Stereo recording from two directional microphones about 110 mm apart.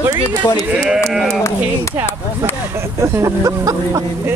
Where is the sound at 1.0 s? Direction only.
Centre (ahead or behind).